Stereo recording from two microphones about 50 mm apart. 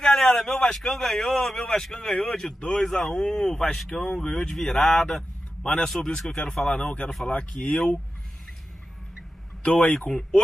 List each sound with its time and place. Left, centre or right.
0.0 s a man's voice: centre
5.6 s a man's voice: left
5.9 s a man's voice: centre
9.6 s a man's voice: left